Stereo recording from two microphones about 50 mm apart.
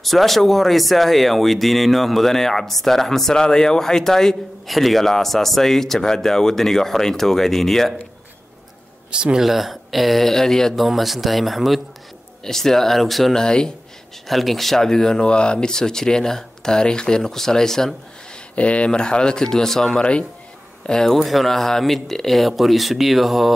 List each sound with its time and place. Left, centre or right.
0.0 s speech: centre
9.1 s speech: centre
9.4 s speech: centre
10.9 s speech: centre
13.4 s speech: centre
14.2 s speech: centre
18.5 s speech: left; by 23.5 s centre